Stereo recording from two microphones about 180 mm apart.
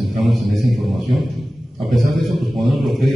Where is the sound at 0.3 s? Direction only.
Centre (ahead or behind).